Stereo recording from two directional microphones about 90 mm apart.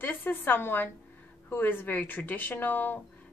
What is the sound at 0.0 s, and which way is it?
A woman's voice, 25° left (ahead or behind).